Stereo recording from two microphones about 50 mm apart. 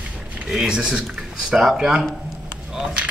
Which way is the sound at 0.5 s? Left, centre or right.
Centre.